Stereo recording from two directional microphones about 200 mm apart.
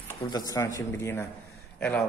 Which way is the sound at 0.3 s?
20° left (ahead or behind).